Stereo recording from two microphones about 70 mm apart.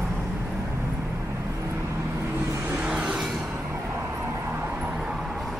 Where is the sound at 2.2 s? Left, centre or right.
Right.